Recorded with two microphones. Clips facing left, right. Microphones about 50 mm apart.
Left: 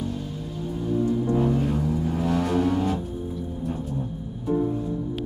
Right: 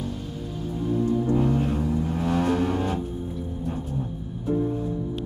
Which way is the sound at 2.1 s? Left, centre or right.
Right.